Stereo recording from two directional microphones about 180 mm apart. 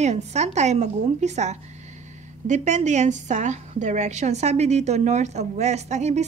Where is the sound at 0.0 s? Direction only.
40° right (ahead or behind).